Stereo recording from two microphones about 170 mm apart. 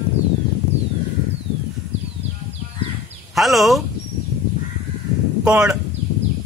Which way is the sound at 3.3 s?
Centre (ahead or behind).